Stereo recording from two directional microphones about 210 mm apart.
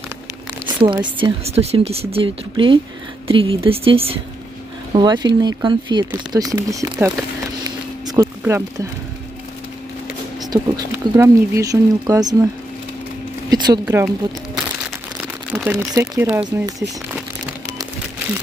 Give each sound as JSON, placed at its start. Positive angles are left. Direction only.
{"t": 0.7, "sound": "speech", "side_deg": -25}
{"t": 7.6, "sound": "a sound", "side_deg": -15}
{"t": 10.5, "sound": "speech", "side_deg": -15}
{"t": 13.5, "sound": "speech", "side_deg": -15}
{"t": 15.1, "sound": "a sound", "side_deg": -10}
{"t": 15.9, "sound": "speech", "side_deg": -10}